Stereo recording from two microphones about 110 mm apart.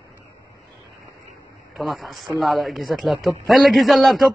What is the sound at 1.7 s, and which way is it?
A man's voice, centre (ahead or behind).